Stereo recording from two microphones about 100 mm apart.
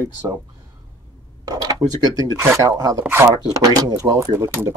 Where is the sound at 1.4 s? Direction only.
40° right (ahead or behind).